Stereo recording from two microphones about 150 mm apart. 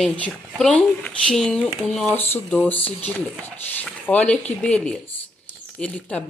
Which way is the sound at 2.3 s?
10° left (ahead or behind).